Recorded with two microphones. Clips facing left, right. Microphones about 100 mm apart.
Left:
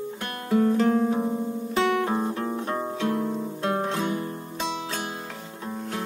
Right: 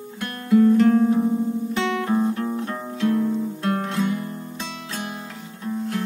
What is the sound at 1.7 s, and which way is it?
Guitar, 35° left (ahead or behind).